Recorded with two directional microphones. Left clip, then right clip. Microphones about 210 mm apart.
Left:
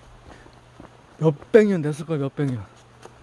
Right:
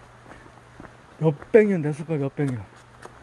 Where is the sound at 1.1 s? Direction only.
30° left (ahead or behind).